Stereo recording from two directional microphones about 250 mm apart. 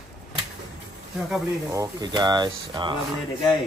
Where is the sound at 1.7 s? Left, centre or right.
Centre.